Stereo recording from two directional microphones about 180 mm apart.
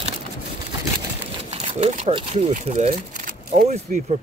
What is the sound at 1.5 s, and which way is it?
Speech, 35° right (ahead or behind).